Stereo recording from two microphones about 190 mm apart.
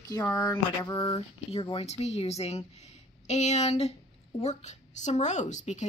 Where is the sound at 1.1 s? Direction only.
25° left (ahead or behind).